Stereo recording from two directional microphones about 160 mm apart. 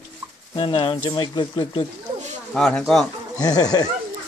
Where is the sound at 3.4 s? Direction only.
25° left (ahead or behind).